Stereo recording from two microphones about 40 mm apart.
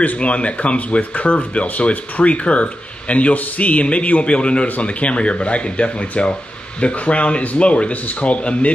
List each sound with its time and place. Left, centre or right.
0.0 s speech: left